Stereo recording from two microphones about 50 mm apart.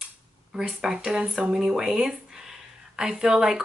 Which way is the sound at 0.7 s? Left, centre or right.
Right.